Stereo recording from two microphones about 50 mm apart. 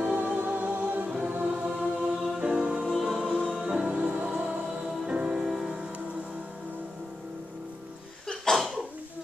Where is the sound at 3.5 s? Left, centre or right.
Centre.